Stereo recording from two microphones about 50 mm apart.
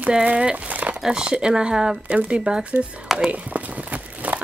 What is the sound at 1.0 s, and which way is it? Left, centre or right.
Speech, centre.